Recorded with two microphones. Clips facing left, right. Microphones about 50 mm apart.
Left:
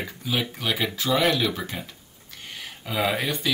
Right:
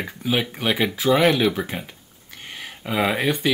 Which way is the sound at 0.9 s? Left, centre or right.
Centre.